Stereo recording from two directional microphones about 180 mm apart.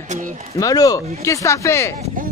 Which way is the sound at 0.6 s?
20° left (ahead or behind).